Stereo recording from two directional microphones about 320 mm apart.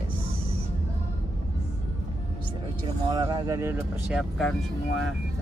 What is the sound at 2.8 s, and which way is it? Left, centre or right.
Speech, centre.